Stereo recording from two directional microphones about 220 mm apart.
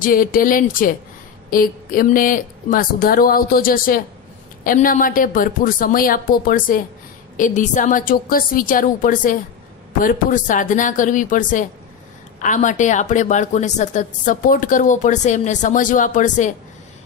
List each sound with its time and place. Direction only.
0.0 s a woman's voice: 40° left (ahead or behind)